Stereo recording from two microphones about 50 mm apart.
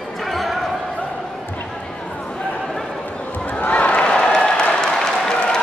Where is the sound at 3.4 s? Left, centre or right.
Left.